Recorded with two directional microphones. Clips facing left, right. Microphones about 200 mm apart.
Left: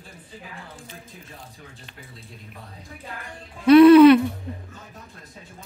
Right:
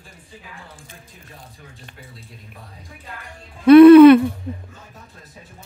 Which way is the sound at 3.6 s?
55° right (ahead or behind).